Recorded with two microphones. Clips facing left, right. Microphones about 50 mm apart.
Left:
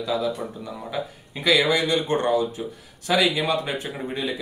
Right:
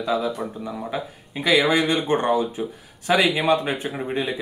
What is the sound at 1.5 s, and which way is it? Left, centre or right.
Speech, right.